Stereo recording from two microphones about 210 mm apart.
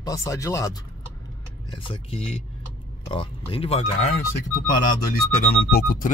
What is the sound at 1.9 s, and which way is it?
Speech, 30° left (ahead or behind).